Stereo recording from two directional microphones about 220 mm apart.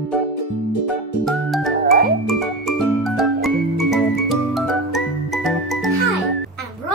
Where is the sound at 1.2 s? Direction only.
Centre (ahead or behind).